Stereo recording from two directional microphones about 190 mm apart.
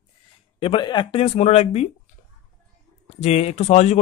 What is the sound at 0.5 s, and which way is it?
Speech, 25° left (ahead or behind).